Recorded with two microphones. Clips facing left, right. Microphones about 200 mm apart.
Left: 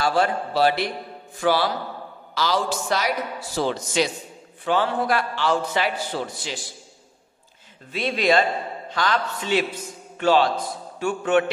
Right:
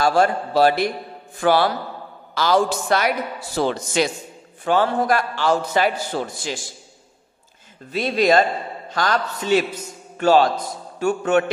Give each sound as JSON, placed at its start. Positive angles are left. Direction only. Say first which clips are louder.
{"t": 0.0, "sound": "a man's voice", "louder": "right 4 dB", "side_deg": -45}
{"t": 7.9, "sound": "a man's voice", "louder": "right 3 dB", "side_deg": -40}